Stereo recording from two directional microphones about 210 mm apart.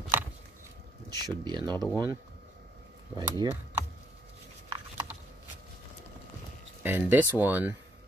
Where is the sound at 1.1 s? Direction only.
20° right (ahead or behind).